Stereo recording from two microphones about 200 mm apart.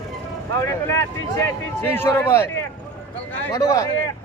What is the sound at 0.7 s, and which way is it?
Speech, 15° left (ahead or behind).